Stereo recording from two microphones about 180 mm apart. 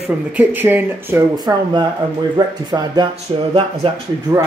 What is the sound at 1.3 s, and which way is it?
Speech, 25° right (ahead or behind).